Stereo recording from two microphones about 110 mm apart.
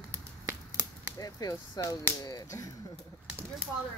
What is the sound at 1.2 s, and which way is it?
Speech, 30° left (ahead or behind).